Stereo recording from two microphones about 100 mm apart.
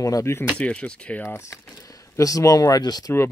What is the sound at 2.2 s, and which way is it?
Speech, 35° left (ahead or behind).